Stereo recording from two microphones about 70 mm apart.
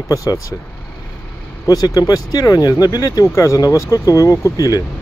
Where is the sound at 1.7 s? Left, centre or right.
Left.